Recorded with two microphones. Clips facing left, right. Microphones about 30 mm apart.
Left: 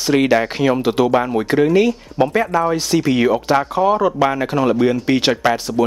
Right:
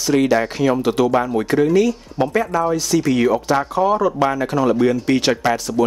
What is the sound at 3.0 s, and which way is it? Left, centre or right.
Speech, centre.